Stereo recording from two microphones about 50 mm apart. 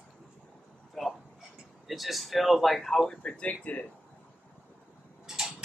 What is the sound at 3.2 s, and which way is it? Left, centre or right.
Speech, left.